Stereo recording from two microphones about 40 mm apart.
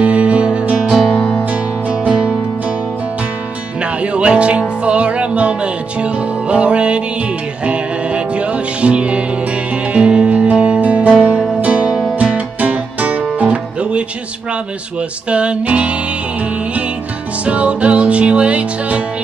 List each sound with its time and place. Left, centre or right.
0.0 s music: right
1.1 s music: left
1.5 s music: right
3.8 s music: right
17.5 s music: right